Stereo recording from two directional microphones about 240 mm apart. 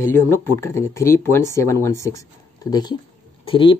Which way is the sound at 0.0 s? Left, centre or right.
Centre.